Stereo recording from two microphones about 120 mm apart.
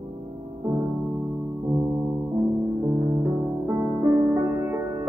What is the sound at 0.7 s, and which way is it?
Music, 15° right (ahead or behind).